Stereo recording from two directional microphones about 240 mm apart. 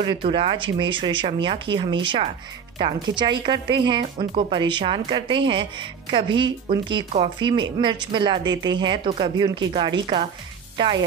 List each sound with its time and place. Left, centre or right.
0.0 s speech: right